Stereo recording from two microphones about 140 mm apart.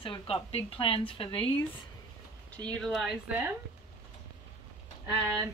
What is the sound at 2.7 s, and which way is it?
Speech, centre (ahead or behind).